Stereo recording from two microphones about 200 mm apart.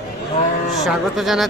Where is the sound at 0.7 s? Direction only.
Centre (ahead or behind).